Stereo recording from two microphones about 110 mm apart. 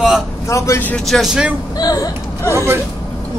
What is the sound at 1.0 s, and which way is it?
Speech, centre (ahead or behind).